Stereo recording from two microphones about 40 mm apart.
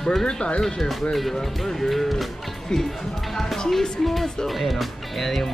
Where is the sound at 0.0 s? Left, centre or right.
Centre.